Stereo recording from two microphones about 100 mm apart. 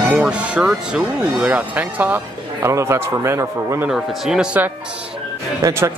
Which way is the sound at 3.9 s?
5° right (ahead or behind).